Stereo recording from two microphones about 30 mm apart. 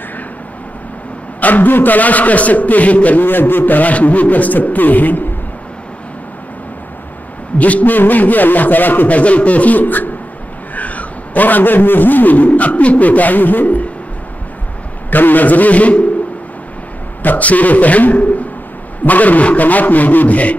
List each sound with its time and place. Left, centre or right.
1.4 s a man's voice: left
3.9 s a man's voice: left
7.5 s a man's voice: left
7.9 s speech: left
9.1 s a man's voice: left
9.8 s beatboxing: left
10.7 s a man's voice: left
15.0 s a man's voice: left
17.2 s a man's voice: left
17.5 s a man's voice: left